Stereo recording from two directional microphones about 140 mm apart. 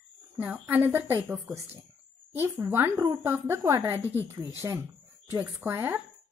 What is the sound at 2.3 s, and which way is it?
Speech, 15° right (ahead or behind).